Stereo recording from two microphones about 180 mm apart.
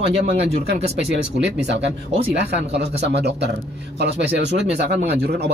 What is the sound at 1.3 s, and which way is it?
Speech, 75° right (ahead or behind).